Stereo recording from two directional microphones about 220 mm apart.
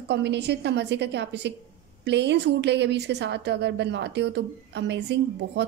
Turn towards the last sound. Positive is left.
turn(degrees=-50)  # may be behind; listen again after turning